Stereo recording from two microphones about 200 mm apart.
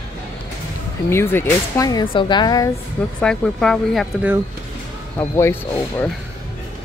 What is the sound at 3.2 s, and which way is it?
Speech, 5° left (ahead or behind).